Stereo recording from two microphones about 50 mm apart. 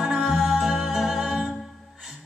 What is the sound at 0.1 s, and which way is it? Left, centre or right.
Music, centre.